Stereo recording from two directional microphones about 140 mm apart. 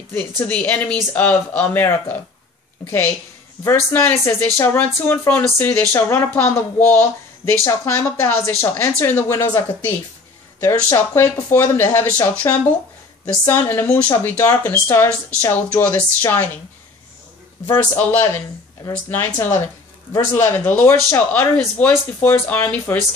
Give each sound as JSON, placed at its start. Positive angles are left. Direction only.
{"t": 0.4, "sound": "speech", "side_deg": 10}
{"t": 10.6, "sound": "speech", "side_deg": 20}
{"t": 17.6, "sound": "speech", "side_deg": 15}